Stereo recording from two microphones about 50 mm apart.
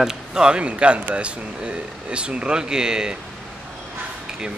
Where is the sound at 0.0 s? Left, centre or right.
Centre.